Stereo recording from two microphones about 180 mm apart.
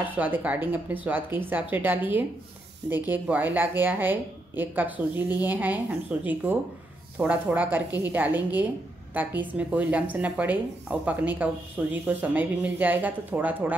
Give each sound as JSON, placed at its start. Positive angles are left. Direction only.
{"t": 0.0, "sound": "a woman's voice", "side_deg": -10}